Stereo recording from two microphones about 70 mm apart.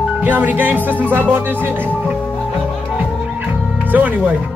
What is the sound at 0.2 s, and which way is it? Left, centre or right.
Speech, right.